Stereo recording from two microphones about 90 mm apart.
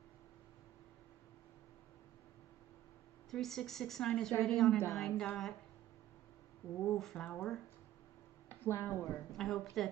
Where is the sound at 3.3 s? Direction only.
5° left (ahead or behind).